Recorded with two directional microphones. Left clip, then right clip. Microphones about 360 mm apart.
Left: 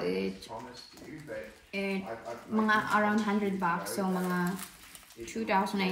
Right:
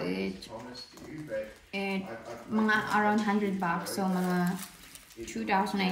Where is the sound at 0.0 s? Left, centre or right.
Centre.